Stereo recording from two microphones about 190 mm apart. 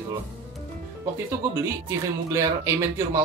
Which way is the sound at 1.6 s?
15° right (ahead or behind).